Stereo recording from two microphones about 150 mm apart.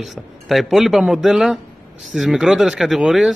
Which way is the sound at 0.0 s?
Centre (ahead or behind).